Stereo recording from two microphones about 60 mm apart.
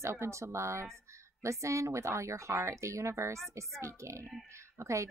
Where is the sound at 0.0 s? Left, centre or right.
Right.